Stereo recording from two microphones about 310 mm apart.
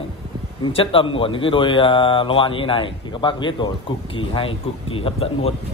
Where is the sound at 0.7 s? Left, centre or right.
Centre.